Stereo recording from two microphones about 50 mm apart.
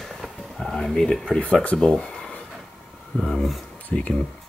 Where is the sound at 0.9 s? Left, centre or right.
Centre.